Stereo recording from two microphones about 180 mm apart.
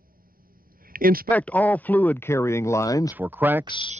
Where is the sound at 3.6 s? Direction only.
25° left (ahead or behind).